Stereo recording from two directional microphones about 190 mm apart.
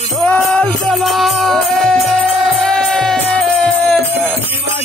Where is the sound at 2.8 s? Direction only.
Centre (ahead or behind).